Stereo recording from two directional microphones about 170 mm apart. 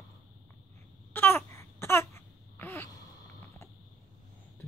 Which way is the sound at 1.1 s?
15° left (ahead or behind).